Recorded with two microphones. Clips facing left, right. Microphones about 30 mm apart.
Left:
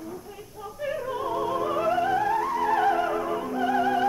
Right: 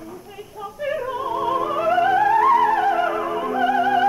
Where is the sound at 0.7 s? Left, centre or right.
Right.